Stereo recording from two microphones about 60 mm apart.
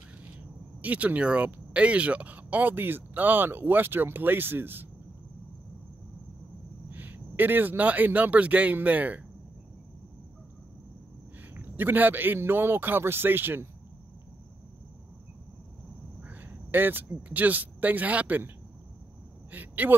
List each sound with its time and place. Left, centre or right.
0.8 s speech: right
6.9 s speech: right
11.5 s speech: right
16.2 s speech: right
19.5 s speech: right